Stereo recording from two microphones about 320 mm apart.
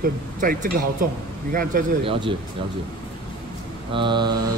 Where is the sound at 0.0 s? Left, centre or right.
Right.